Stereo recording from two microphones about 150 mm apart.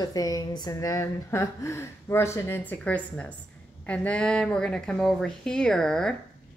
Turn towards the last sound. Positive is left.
turn(degrees=5)  # may be behind; listen again after turning